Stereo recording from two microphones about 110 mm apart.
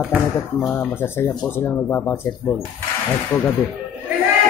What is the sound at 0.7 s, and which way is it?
Speech, 20° left (ahead or behind).